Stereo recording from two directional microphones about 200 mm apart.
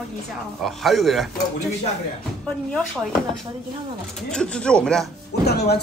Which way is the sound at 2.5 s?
5° left (ahead or behind).